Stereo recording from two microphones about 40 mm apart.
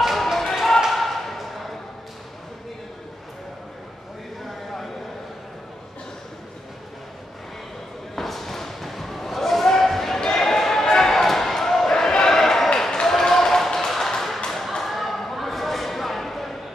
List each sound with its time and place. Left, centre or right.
0.0 s basketball bounce: centre
0.7 s ping: centre
8.2 s basketball bounce: centre
14.5 s a sound: centre